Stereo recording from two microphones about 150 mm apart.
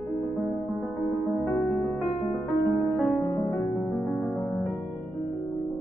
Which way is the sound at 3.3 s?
15° left (ahead or behind).